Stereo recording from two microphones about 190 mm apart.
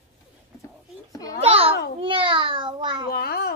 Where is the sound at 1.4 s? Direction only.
30° right (ahead or behind).